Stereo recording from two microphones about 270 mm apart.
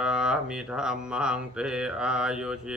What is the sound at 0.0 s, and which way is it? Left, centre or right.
Speech, centre.